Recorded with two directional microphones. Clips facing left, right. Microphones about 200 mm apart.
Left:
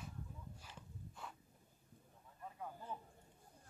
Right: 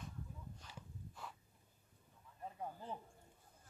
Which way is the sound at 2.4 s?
30° right (ahead or behind).